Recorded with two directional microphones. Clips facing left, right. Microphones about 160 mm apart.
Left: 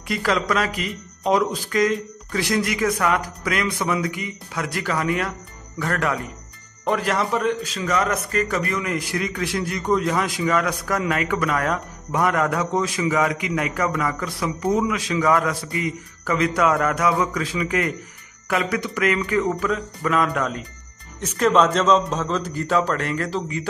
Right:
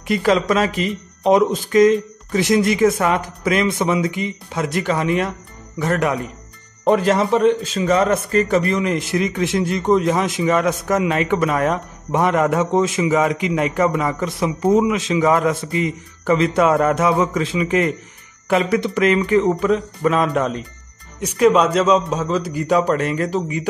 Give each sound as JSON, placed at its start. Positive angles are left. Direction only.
{"t": 0.1, "sound": "a man's voice", "side_deg": -20}
{"t": 21.2, "sound": "a man's voice", "side_deg": -10}